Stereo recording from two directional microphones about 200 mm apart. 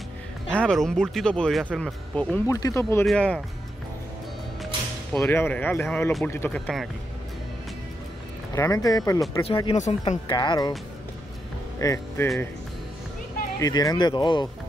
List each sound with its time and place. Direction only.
0.5 s speech: 5° left (ahead or behind)
2.4 s speech: 15° left (ahead or behind)
5.1 s speech: 10° left (ahead or behind)
8.5 s speech: 15° left (ahead or behind)
11.8 s speech: 15° left (ahead or behind)
13.6 s speech: 20° left (ahead or behind)